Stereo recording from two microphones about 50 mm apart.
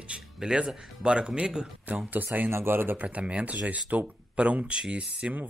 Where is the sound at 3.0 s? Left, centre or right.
Right.